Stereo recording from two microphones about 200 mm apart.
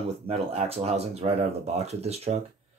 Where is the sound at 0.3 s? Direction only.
30° right (ahead or behind).